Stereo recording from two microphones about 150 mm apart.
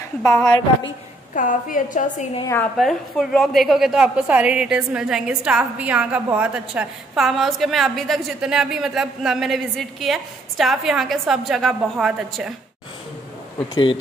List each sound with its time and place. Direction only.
1.3 s a woman's voice: 65° left (ahead or behind)
2.4 s a woman's voice: 15° left (ahead or behind)
2.8 s a woman's voice: centre (ahead or behind)
13.6 s a man's voice: 35° left (ahead or behind)